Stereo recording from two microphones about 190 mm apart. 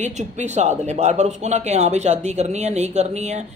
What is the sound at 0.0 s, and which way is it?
A man's voice, 35° right (ahead or behind).